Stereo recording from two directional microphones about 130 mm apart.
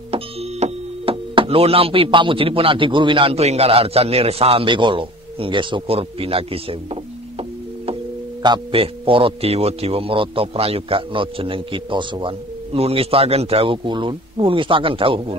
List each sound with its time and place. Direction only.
0.1 s a man's voice: 55° right (ahead or behind)